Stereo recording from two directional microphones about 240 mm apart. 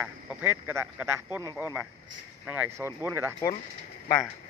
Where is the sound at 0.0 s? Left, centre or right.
Centre.